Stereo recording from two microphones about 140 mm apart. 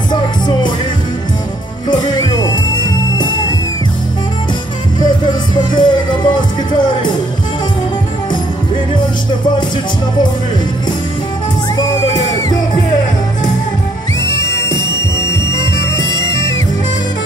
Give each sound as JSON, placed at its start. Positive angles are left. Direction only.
{"t": 0.1, "sound": "music", "side_deg": 30}
{"t": 1.9, "sound": "music", "side_deg": 30}
{"t": 5.0, "sound": "music", "side_deg": 35}
{"t": 14.2, "sound": "music", "side_deg": 20}